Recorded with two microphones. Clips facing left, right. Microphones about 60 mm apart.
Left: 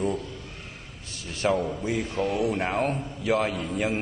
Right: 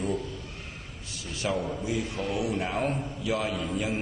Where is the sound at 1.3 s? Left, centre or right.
Left.